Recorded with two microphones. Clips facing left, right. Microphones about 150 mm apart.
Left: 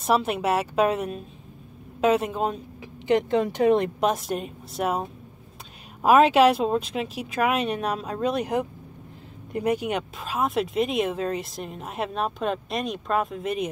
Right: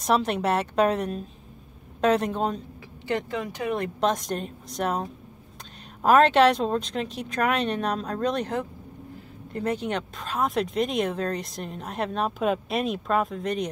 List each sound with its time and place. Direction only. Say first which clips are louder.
0.0 s speech: even; 5° left (ahead or behind)
3.1 s speech: left 7 dB; 25° left (ahead or behind)
4.0 s speech: left 1 dB; 5° left (ahead or behind)